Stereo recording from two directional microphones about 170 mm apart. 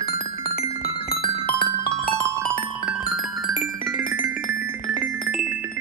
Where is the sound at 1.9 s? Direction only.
15° right (ahead or behind).